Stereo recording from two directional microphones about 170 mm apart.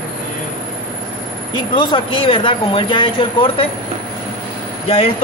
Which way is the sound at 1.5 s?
30° left (ahead or behind).